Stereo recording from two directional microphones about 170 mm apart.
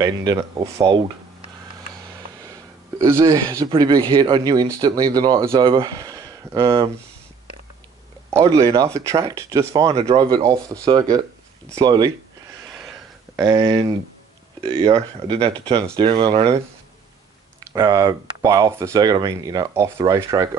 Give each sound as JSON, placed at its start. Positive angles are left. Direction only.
{"t": 0.0, "sound": "speech", "side_deg": -20}
{"t": 3.0, "sound": "speech", "side_deg": -15}
{"t": 6.6, "sound": "speech", "side_deg": -30}
{"t": 8.3, "sound": "speech", "side_deg": -20}
{"t": 13.4, "sound": "speech", "side_deg": -20}
{"t": 17.6, "sound": "speech", "side_deg": -25}